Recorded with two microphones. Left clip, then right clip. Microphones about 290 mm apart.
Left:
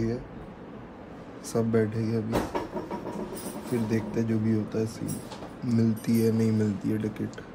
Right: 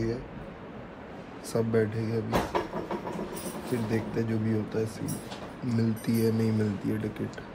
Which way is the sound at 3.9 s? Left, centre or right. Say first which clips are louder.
Left 1 dB; centre.